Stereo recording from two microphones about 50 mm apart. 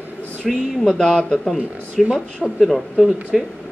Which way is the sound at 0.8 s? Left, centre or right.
Centre.